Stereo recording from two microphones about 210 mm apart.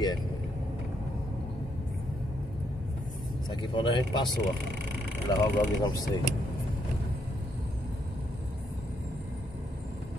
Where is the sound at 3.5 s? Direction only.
20° left (ahead or behind).